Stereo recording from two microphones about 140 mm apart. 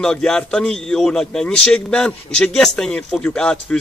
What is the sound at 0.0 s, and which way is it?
A man's voice, 5° left (ahead or behind).